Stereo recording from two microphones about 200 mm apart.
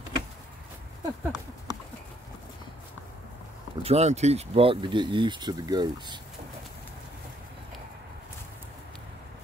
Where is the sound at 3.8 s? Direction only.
30° right (ahead or behind).